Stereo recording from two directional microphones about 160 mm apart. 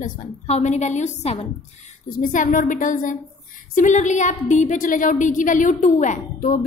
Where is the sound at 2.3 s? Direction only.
55° left (ahead or behind).